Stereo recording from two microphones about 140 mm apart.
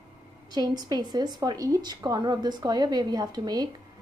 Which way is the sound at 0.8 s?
30° right (ahead or behind).